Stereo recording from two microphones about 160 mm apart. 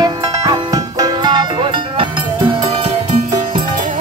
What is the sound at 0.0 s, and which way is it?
Music, 25° right (ahead or behind).